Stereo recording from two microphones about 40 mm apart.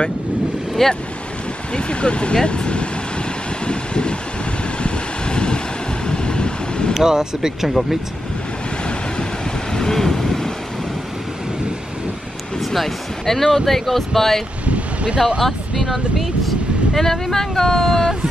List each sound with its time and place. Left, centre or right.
0.8 s speech: centre
1.7 s speech: left
3.6 s vehicle: left
6.9 s speech: centre
9.7 s vehicle: centre
12.5 s speech: centre
15.1 s speech: centre
15.4 s speech: centre